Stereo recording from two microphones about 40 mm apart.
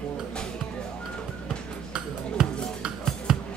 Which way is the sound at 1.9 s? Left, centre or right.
Right.